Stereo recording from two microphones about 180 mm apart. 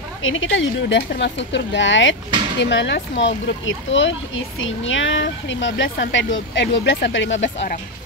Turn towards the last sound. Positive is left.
turn(degrees=90)